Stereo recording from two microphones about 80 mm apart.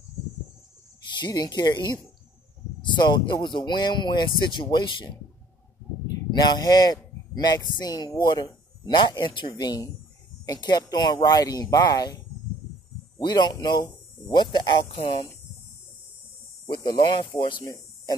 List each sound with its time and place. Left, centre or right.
1.1 s speech: left
6.3 s a man's voice: left
9.6 s speech: left
13.2 s speech: left
14.3 s speech: left
16.6 s speech: left
17.4 s speech: left